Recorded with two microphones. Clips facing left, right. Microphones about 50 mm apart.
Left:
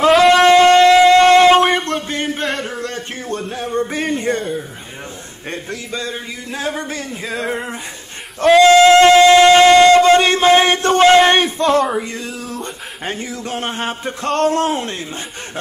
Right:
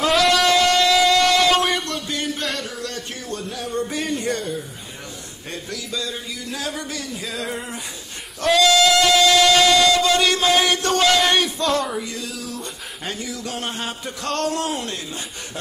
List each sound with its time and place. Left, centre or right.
0.2 s a sound: left
5.5 s speech: left
8.5 s music: left
12.0 s speech: left